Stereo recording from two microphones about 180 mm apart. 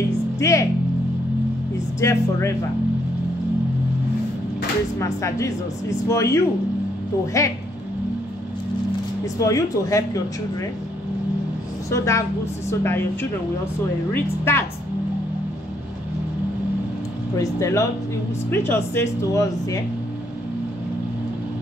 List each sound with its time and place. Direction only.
0.4 s speech: 15° left (ahead or behind)
2.0 s speech: 15° left (ahead or behind)
4.9 s speech: 15° left (ahead or behind)
9.4 s speech: 20° left (ahead or behind)
11.9 s speech: 15° left (ahead or behind)
17.4 s speech: 20° left (ahead or behind)